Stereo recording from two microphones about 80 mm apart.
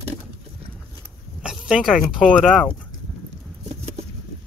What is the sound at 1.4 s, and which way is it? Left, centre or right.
Speech, centre.